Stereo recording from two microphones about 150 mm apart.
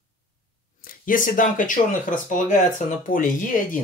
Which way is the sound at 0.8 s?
65° left (ahead or behind).